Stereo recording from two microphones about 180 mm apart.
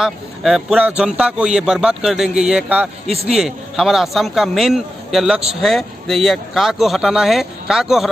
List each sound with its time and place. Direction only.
0.0 s a man's voice: centre (ahead or behind)
3.1 s a man's voice: 35° right (ahead or behind)
3.3 s a man's voice: centre (ahead or behind)